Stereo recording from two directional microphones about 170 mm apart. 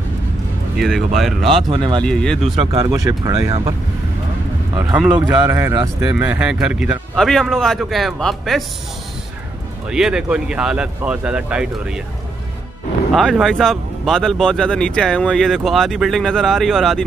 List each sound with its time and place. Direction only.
0.7 s speech: centre (ahead or behind)
1.7 s speech: 30° right (ahead or behind)
2.0 s speech: 5° left (ahead or behind)
2.5 s speech: 35° right (ahead or behind)
2.8 s speech: 20° right (ahead or behind)
4.9 s speech: 5° right (ahead or behind)
9.8 s speech: 5° right (ahead or behind)
13.1 s speech: centre (ahead or behind)